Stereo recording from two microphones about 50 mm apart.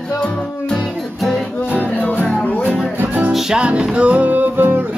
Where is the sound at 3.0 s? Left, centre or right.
Right.